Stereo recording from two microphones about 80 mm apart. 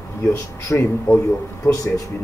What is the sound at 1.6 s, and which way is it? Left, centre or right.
Speech, left.